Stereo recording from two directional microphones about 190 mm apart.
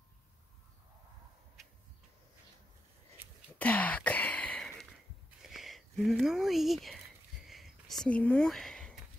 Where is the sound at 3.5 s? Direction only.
10° left (ahead or behind).